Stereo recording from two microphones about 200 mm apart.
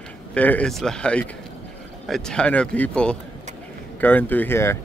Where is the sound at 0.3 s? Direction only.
5° left (ahead or behind).